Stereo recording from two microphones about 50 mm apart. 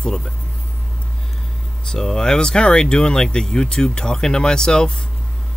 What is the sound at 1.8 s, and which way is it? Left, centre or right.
Speech, centre.